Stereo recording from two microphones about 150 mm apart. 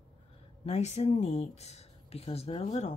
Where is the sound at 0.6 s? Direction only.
50° left (ahead or behind).